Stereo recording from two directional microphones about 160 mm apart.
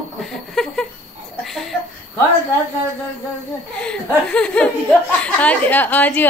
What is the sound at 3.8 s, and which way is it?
A woman's voice, 5° left (ahead or behind).